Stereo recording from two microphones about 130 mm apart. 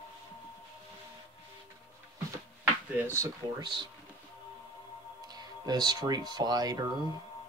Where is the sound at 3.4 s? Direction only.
35° right (ahead or behind).